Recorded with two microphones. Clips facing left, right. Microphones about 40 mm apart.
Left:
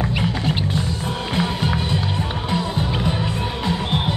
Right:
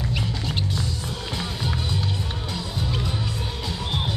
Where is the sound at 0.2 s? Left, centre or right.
Left.